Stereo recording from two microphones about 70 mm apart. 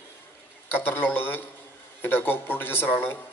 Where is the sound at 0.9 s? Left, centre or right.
Left.